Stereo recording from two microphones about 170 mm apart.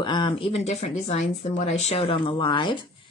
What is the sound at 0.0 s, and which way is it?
Speech, 25° left (ahead or behind).